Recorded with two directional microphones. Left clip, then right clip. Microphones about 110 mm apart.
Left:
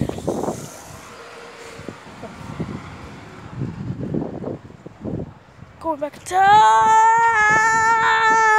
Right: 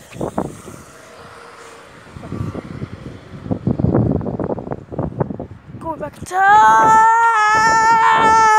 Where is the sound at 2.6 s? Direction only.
35° left (ahead or behind).